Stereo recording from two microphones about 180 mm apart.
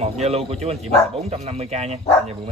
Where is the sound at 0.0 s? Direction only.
35° right (ahead or behind).